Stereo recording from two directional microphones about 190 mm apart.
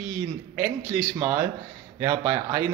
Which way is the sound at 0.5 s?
10° right (ahead or behind).